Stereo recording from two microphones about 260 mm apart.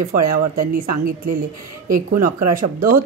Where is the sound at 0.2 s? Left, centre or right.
Right.